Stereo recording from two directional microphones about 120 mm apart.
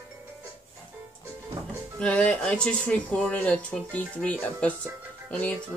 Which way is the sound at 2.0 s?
10° left (ahead or behind).